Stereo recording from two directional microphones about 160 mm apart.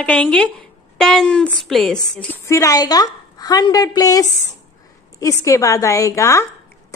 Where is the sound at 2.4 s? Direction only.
20° left (ahead or behind).